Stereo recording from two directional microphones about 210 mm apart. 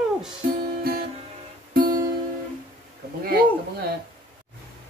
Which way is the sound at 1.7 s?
45° right (ahead or behind).